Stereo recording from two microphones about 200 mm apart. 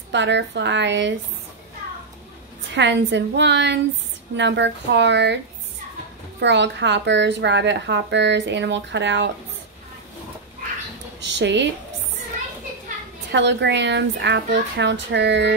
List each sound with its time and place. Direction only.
0.1 s a woman's voice: 60° right (ahead or behind)
2.7 s a woman's voice: 60° right (ahead or behind)
6.4 s a woman's voice: 60° right (ahead or behind)
11.2 s a woman's voice: 60° right (ahead or behind)
13.3 s a woman's voice: 60° right (ahead or behind)